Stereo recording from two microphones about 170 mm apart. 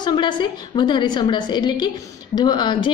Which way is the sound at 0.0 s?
25° left (ahead or behind).